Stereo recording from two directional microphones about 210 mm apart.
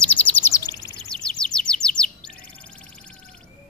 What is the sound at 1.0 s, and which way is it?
Chirp, 5° left (ahead or behind).